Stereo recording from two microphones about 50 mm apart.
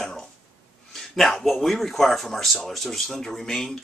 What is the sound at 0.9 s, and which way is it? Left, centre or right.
Speech, centre.